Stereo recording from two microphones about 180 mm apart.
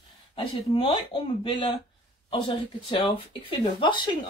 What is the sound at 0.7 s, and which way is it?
Speech, 30° left (ahead or behind).